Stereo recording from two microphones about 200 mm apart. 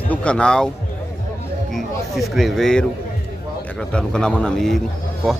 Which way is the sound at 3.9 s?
5° left (ahead or behind).